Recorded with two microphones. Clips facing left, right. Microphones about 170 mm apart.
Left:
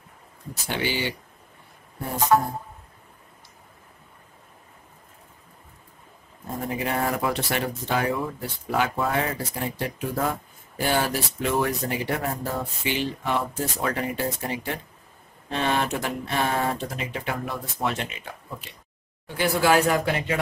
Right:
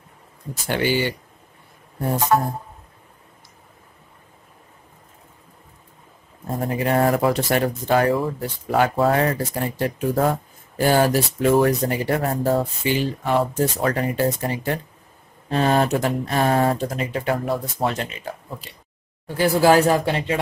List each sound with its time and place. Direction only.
0.7 s speech: 50° right (ahead or behind)
6.8 s speech: 45° right (ahead or behind)
9.1 s speech: 50° right (ahead or behind); by 20.3 s 30° right (ahead or behind)